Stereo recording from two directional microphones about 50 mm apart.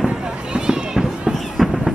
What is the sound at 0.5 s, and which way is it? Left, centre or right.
Run, centre.